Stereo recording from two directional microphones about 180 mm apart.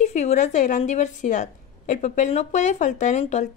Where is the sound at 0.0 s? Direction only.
40° left (ahead or behind).